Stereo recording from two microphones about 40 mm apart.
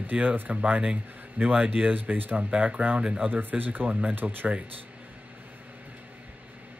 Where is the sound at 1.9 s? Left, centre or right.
Right.